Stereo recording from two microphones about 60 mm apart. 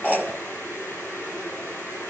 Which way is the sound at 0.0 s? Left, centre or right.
Left.